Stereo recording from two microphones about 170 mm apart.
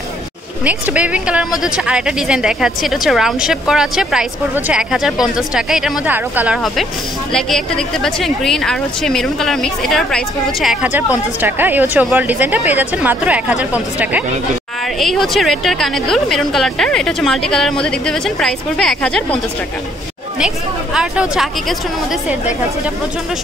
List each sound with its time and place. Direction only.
0.7 s a woman's voice: 10° right (ahead or behind)
20.3 s a woman's voice: 5° right (ahead or behind)